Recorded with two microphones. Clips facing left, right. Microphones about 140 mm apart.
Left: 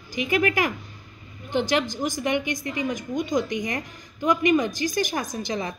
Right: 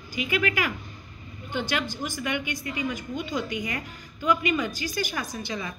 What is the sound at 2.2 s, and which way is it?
A woman's voice, 35° left (ahead or behind).